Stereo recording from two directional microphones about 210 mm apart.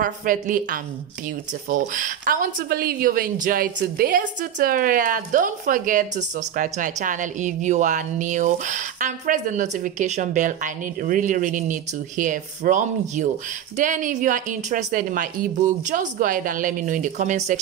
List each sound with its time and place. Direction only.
0.0 s speech: 40° right (ahead or behind)